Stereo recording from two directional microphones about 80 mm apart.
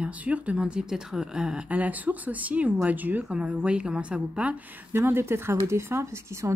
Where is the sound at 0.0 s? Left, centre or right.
Centre.